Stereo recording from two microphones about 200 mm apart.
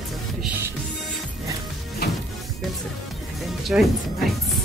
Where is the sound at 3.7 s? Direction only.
Centre (ahead or behind).